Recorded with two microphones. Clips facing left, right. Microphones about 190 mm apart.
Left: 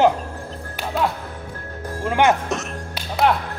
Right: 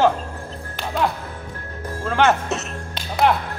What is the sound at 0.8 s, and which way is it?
Music, 5° left (ahead or behind).